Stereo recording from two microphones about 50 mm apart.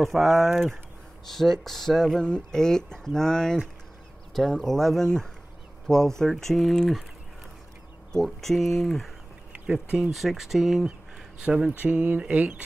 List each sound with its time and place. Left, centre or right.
0.0 s speech: centre
8.1 s speech: centre
9.5 s speech: right
10.1 s speech: centre
11.8 s speech: right